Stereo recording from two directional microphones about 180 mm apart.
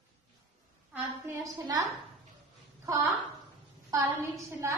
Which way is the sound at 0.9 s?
15° right (ahead or behind).